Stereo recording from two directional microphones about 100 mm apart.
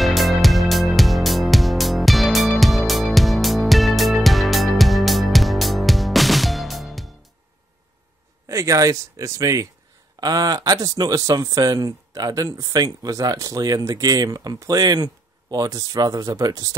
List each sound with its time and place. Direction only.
0.0 s music: centre (ahead or behind)
8.5 s speech: 30° right (ahead or behind)